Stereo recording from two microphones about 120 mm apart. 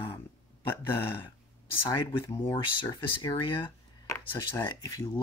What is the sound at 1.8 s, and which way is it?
Speech, 40° left (ahead or behind).